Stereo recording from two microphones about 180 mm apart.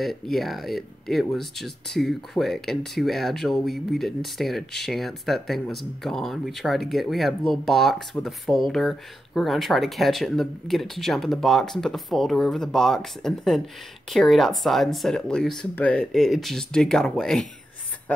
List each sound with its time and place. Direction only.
0.0 s speech: centre (ahead or behind)